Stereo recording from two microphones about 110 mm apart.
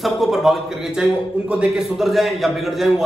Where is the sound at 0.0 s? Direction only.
Centre (ahead or behind).